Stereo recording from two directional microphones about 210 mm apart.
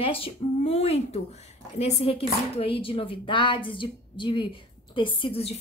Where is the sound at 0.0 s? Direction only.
25° left (ahead or behind).